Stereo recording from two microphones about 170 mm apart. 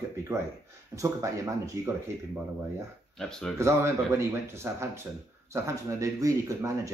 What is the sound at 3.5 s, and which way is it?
Speech, 15° right (ahead or behind).